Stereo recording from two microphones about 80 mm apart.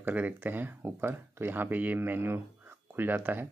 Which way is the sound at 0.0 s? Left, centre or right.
Right.